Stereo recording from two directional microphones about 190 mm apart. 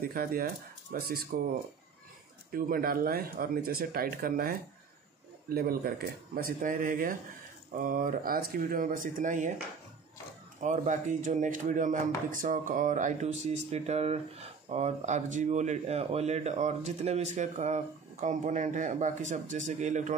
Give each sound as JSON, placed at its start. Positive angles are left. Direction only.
{"t": 0.0, "sound": "speech", "side_deg": -50}
{"t": 2.5, "sound": "speech", "side_deg": -50}
{"t": 10.6, "sound": "speech", "side_deg": -40}